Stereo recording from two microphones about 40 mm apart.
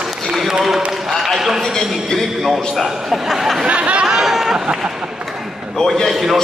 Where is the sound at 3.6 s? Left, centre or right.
Right.